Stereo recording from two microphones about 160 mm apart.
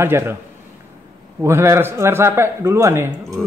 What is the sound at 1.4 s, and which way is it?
A man's voice, 15° right (ahead or behind).